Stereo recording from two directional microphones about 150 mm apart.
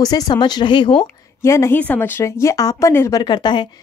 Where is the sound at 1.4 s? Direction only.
20° left (ahead or behind).